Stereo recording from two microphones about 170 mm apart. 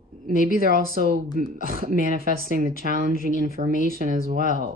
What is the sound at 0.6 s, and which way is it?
Speech, 60° right (ahead or behind).